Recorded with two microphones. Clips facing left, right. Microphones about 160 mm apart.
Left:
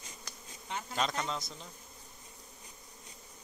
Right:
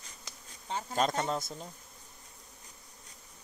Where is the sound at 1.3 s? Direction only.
50° right (ahead or behind).